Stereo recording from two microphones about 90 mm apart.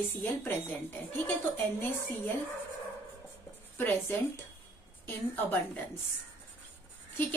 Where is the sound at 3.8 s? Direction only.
25° left (ahead or behind).